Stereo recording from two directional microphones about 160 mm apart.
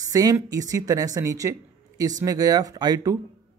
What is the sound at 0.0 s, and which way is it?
A man's voice, 20° right (ahead or behind).